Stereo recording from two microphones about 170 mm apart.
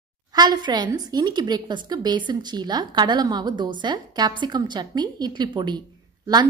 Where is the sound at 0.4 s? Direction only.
25° right (ahead or behind).